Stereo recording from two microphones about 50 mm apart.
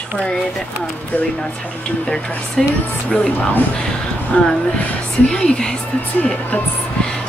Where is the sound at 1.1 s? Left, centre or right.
Left.